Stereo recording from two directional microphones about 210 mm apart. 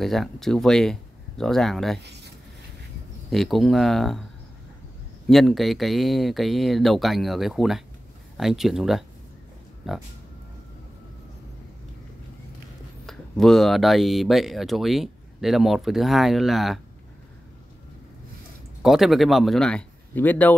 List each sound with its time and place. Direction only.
0.0 s speech: centre (ahead or behind)
2.0 s speech: 55° right (ahead or behind)
3.3 s speech: centre (ahead or behind)
5.3 s speech: centre (ahead or behind)
13.0 s speech: centre (ahead or behind)
18.8 s speech: centre (ahead or behind)